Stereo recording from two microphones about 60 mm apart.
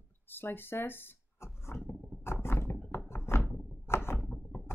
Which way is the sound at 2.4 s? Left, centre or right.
Left.